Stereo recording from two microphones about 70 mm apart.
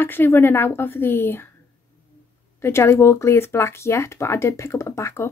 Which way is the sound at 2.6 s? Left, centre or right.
Left.